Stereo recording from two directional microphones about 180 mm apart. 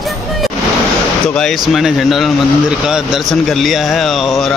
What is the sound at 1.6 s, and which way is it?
Speech, centre (ahead or behind).